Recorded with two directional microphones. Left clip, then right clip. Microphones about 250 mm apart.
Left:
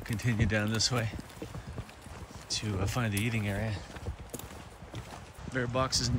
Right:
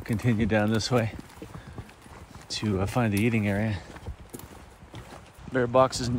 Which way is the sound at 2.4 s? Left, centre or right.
Right.